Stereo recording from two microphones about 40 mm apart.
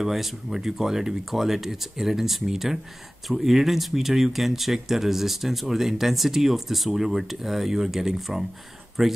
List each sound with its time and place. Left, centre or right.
0.0 s speech: centre
9.0 s speech: centre